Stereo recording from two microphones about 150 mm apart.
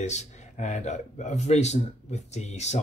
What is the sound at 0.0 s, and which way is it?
Speech, 50° left (ahead or behind).